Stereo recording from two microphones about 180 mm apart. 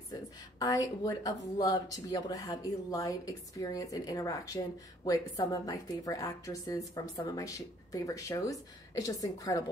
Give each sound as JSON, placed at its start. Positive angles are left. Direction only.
{"t": 0.6, "sound": "speech", "side_deg": 20}